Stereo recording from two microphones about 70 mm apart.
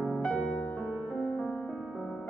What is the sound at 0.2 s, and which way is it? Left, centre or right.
Music, left.